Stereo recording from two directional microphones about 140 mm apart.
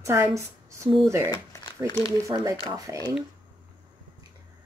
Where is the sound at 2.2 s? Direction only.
25° right (ahead or behind).